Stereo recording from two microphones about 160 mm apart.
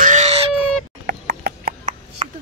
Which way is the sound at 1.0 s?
90° right.